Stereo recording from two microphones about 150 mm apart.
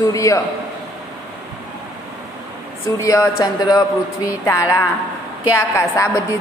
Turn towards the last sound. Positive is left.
turn(degrees=20)  # may be behind; listen again after turning